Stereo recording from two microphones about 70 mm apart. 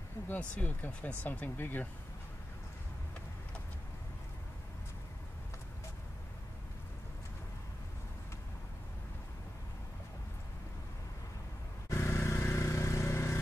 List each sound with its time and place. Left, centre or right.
0.4 s speech: left
11.9 s vehicle: left